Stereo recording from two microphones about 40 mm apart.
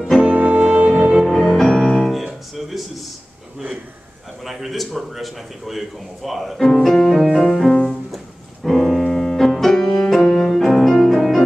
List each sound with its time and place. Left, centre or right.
0.2 s music: right
1.2 s music: centre
4.5 s a man's voice: centre
7.3 s a man's voice: centre
8.6 s piano: centre
9.2 s music: centre